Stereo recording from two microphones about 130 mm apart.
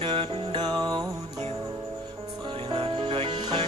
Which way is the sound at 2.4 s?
40° right (ahead or behind).